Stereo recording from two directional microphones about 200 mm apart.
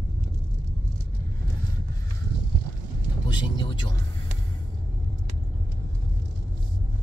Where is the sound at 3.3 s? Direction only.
25° left (ahead or behind).